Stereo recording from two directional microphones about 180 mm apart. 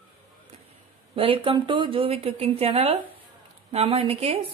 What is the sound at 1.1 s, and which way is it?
Speech, 30° right (ahead or behind).